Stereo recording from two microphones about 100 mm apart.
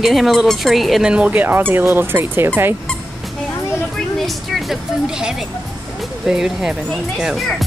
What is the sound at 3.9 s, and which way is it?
Speech, centre (ahead or behind).